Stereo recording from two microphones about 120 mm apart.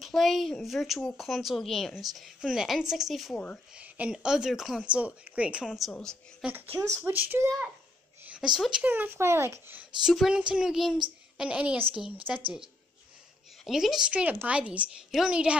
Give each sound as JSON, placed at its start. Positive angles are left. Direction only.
{"t": 0.0, "sound": "speech", "side_deg": 0}
{"t": 5.7, "sound": "speech", "side_deg": 0}
{"t": 6.4, "sound": "speech", "side_deg": -15}
{"t": 10.0, "sound": "speech", "side_deg": -5}
{"t": 13.7, "sound": "speech", "side_deg": -5}